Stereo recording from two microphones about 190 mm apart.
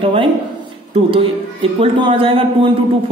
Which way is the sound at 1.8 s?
30° right (ahead or behind).